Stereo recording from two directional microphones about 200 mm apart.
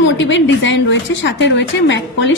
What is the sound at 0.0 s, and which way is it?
A woman's voice, 65° left (ahead or behind).